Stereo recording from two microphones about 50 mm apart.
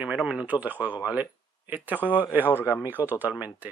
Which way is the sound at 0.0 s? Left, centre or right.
Right.